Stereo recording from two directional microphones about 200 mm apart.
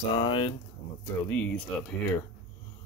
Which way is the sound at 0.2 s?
25° left (ahead or behind).